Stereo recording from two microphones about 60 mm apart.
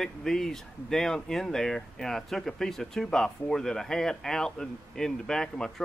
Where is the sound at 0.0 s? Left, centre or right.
Centre.